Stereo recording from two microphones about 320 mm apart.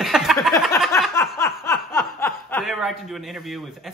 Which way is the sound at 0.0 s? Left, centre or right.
Centre.